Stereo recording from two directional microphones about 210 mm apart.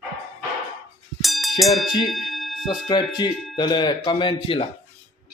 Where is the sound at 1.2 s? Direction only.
Centre (ahead or behind).